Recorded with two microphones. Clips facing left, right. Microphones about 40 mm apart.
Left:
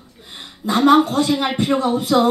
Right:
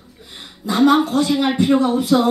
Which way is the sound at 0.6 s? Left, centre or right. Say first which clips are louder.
Left 1 dB; left.